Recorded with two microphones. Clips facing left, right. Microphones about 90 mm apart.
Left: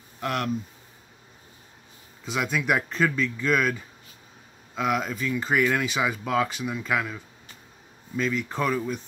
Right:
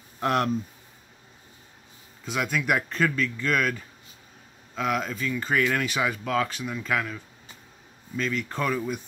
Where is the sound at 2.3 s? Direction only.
Centre (ahead or behind).